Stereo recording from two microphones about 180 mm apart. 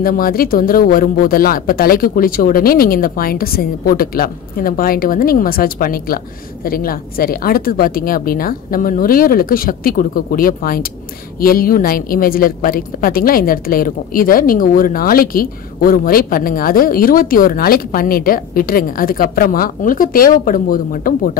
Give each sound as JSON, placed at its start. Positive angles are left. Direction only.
{"t": 0.0, "sound": "speech", "side_deg": 55}